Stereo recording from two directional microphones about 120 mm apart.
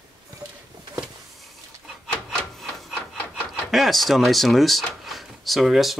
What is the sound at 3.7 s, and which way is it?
Speech, centre (ahead or behind).